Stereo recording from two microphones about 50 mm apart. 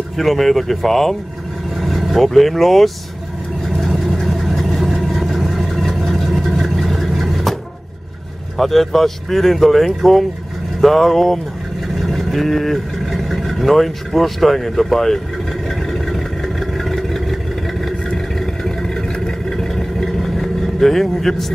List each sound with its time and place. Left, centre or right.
0.2 s speech: centre
3.6 s vehicle: centre
8.5 s speech: centre
15.9 s vehicle: centre